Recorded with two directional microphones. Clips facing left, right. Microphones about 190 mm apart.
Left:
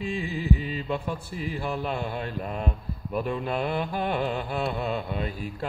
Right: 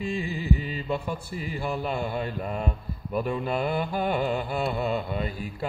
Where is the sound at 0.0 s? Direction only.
Centre (ahead or behind).